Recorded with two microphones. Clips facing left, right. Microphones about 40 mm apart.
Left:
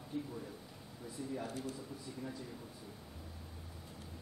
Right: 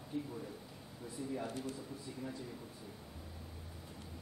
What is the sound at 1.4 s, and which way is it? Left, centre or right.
Speech, right.